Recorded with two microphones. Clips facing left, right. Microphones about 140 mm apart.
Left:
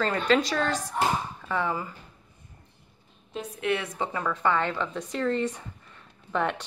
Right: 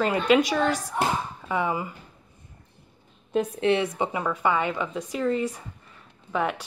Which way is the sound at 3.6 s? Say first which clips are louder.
Right 3 dB; 25° right (ahead or behind).